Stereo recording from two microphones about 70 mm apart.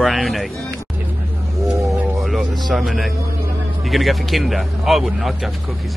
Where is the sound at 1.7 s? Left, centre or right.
Centre.